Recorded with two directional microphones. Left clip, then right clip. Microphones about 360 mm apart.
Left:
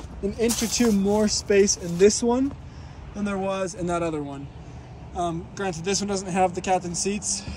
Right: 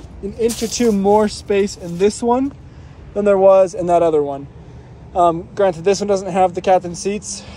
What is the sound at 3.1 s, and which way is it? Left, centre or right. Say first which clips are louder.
Speech: right 16 dB; right.